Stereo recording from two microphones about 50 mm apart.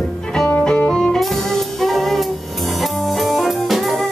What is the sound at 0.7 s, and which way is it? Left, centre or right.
Music, left.